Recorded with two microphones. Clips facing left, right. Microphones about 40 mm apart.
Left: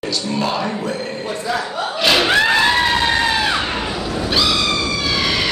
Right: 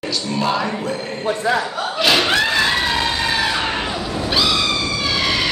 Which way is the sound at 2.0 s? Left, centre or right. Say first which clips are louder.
Left 1 dB; centre.